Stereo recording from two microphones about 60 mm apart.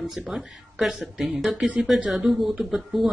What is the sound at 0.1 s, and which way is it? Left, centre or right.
Speech, centre.